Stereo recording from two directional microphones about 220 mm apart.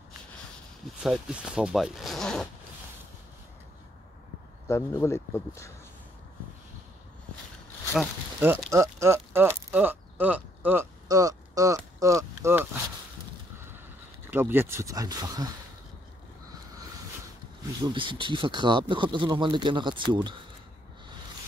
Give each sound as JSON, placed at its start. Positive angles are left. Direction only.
{"t": 1.0, "sound": "speech", "side_deg": -5}
{"t": 4.6, "sound": "speech", "side_deg": 10}
{"t": 7.9, "sound": "speech", "side_deg": -5}
{"t": 14.3, "sound": "speech", "side_deg": -10}
{"t": 17.8, "sound": "speech", "side_deg": -20}